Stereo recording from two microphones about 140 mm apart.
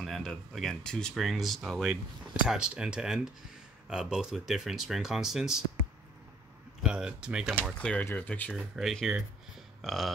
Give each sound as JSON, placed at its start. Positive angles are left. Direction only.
{"t": 0.0, "sound": "speech", "side_deg": 0}
{"t": 6.8, "sound": "speech", "side_deg": -5}
{"t": 7.8, "sound": "speech", "side_deg": 15}
{"t": 8.5, "sound": "speech", "side_deg": 0}